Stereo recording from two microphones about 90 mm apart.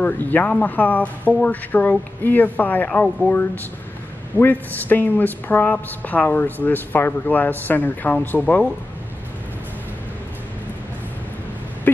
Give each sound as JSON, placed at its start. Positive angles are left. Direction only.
{"t": 0.0, "sound": "speech", "side_deg": 20}
{"t": 4.4, "sound": "speech", "side_deg": 20}